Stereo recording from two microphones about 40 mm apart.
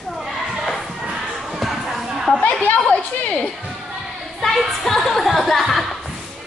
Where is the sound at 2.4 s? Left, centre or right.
Left.